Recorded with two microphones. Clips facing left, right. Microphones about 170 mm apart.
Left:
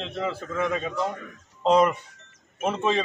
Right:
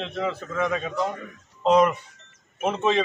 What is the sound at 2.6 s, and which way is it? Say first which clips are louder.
Speech: right 1 dB; 5° right (ahead or behind).